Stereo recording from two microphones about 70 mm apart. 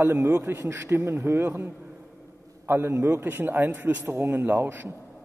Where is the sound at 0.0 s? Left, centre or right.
Right.